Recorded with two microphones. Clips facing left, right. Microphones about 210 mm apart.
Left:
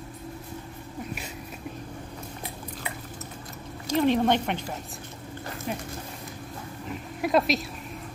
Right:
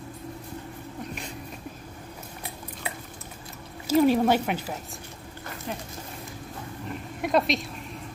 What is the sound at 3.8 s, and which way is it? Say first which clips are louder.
Speech: right 2 dB; 5° right (ahead or behind).